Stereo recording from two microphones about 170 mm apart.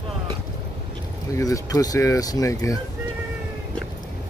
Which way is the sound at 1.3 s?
20° left (ahead or behind).